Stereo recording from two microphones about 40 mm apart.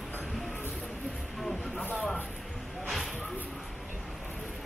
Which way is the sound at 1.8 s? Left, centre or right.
Left.